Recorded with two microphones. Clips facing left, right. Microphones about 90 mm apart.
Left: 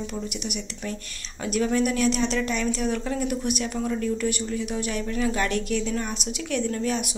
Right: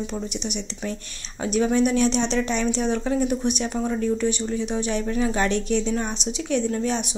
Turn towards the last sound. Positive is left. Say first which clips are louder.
# right 2 dB
turn(degrees=-25)  # may be behind; listen again after turning